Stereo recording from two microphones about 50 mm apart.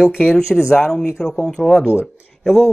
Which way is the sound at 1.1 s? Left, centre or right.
Centre.